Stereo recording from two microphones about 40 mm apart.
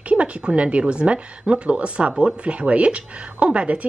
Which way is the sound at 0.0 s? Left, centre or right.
Right.